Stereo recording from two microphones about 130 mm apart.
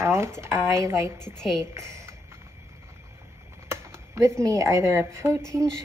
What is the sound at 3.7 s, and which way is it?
Speech, 20° right (ahead or behind).